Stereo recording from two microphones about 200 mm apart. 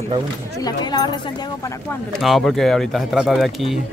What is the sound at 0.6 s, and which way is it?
Speech, 20° left (ahead or behind).